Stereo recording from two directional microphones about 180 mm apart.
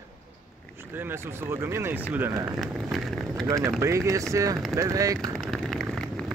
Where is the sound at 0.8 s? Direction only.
10° right (ahead or behind).